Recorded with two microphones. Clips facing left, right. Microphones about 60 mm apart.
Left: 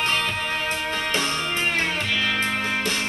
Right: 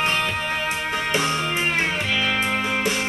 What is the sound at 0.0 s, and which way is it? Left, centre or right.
Music, centre.